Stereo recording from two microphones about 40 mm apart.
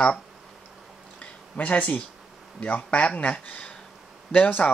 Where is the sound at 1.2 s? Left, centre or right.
Left.